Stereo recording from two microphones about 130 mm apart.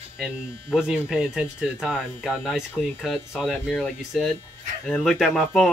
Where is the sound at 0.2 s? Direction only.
5° right (ahead or behind).